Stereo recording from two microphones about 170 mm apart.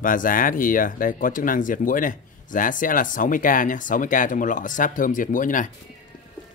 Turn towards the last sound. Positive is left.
turn(degrees=50)  # may be behind; listen again after turning